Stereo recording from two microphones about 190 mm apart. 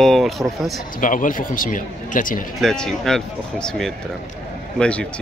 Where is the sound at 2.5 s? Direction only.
5° left (ahead or behind).